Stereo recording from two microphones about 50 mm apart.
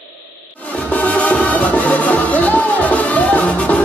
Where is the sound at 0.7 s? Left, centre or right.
Left.